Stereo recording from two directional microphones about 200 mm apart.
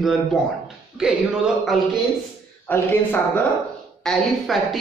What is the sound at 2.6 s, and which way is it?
Speech, 10° left (ahead or behind).